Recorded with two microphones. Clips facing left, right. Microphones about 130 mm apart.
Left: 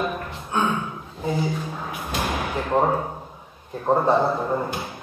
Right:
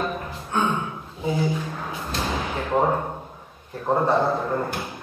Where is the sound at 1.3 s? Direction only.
10° left (ahead or behind).